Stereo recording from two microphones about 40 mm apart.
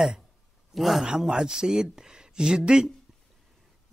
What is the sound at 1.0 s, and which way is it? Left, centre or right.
Speech, centre.